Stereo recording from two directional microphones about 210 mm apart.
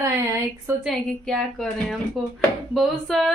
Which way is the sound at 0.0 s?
10° right (ahead or behind).